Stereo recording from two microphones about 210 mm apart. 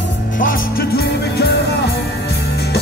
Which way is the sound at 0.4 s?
45° left (ahead or behind).